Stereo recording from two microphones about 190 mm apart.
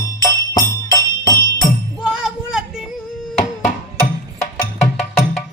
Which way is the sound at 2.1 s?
5° right (ahead or behind).